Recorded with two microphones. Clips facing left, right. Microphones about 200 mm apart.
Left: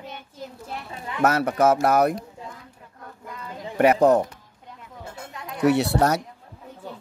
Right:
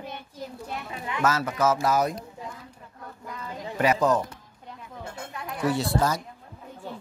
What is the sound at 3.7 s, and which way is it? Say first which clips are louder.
Speech: left 6 dB; 60° left (ahead or behind).